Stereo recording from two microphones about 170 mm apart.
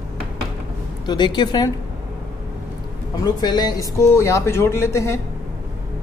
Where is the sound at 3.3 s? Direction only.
25° left (ahead or behind).